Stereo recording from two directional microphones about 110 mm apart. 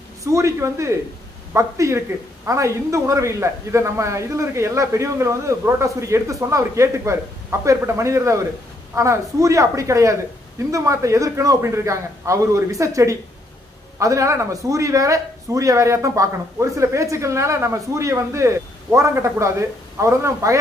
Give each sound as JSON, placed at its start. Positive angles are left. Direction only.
{"t": 0.2, "sound": "speech", "side_deg": -30}